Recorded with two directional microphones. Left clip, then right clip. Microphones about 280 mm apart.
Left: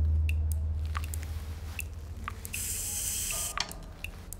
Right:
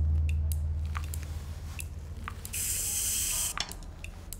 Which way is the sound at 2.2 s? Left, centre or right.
Centre.